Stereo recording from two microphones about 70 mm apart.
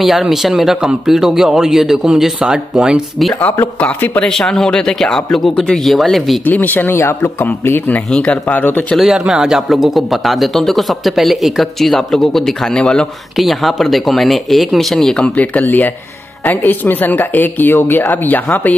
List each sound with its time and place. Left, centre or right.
0.0 s speech: centre
3.3 s a man's voice: left
3.8 s a woman's voice: left
4.2 s speech: centre
6.4 s a woman's voice: left
7.0 s a man's voice: left
8.1 s a woman's voice: centre
8.9 s a woman's voice: centre; by 18.8 s left